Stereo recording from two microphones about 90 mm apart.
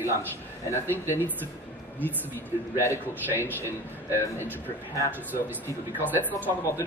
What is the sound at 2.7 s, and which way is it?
Speech, 30° left (ahead or behind).